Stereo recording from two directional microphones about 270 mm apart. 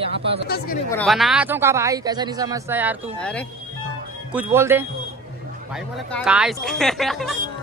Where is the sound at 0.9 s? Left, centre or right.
Centre.